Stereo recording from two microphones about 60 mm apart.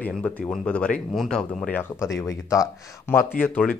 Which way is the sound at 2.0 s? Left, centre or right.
Left.